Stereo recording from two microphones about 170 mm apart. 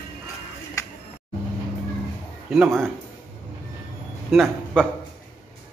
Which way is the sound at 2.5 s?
10° right (ahead or behind).